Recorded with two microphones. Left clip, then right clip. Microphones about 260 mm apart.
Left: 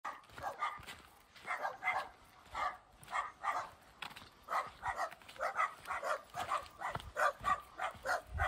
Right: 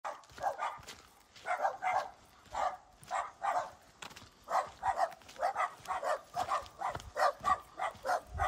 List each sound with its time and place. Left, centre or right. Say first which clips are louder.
0.0 s dog: right 6 dB; right
1.6 s bow-wow: right 5 dB; right
2.6 s dog: right 4 dB; right
4.0 s dog: left 1 dB; centre
4.5 s dog: right 5 dB; right
5.1 s dog: right 1 dB; centre
5.4 s dog: right 3 dB; right